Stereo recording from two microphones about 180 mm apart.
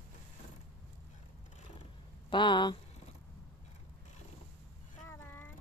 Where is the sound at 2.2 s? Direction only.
25° left (ahead or behind).